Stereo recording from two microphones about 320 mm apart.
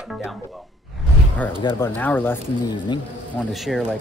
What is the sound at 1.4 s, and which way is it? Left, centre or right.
Speech, centre.